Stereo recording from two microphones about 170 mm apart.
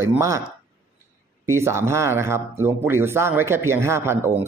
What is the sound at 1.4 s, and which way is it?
Speech, 15° right (ahead or behind).